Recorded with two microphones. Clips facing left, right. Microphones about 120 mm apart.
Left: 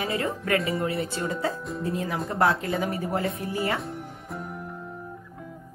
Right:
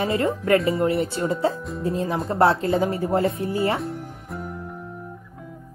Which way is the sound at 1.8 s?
30° right (ahead or behind).